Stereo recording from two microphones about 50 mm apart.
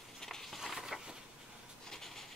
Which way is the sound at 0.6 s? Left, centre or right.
Centre.